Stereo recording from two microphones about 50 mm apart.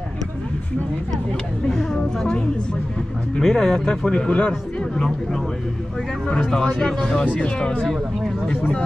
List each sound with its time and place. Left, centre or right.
1.7 s a sound: centre
3.3 s speech: centre
6.5 s speech: centre